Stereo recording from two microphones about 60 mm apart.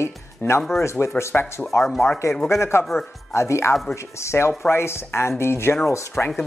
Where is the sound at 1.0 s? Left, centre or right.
Left.